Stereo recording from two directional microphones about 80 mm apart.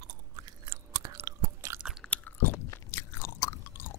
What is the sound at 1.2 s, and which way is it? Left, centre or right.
Chewing, right.